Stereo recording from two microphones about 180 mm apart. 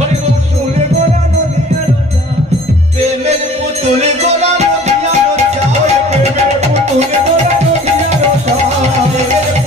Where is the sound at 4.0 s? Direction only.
35° right (ahead or behind).